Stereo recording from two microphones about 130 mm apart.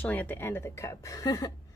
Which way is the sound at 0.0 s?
15° left (ahead or behind).